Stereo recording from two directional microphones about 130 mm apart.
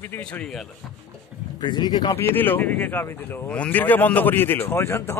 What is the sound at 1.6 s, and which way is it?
Speech, 35° left (ahead or behind).